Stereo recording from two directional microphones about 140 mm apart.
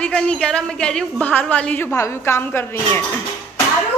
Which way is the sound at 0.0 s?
5° left (ahead or behind).